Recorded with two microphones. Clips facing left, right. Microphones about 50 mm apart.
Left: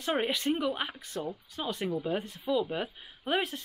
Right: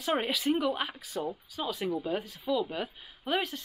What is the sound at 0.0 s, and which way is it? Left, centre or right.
Speech, centre.